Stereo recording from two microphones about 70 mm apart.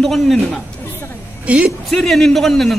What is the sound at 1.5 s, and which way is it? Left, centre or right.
Speech, centre.